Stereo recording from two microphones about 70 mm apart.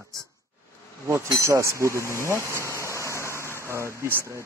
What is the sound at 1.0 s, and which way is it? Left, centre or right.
Speech, right.